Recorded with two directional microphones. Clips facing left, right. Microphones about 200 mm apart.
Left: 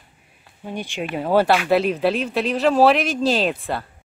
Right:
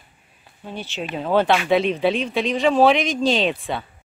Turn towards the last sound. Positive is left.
turn(degrees=0)  # may be behind; listen again after turning